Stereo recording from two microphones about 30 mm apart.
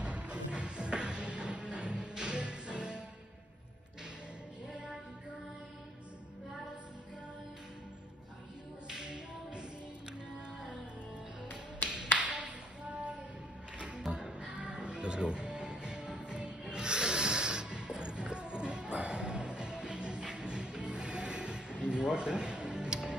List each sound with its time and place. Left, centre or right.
0.0 s music: right
9.0 s tap: right
11.9 s tap: right
13.7 s music: right